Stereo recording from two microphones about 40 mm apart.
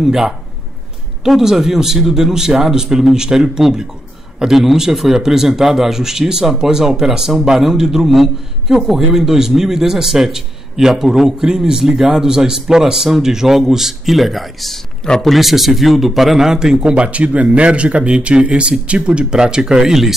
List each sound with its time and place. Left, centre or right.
0.0 s a man's voice: centre
16.7 s speech: right